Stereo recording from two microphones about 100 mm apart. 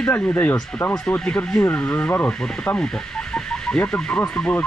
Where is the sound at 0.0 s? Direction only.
20° left (ahead or behind).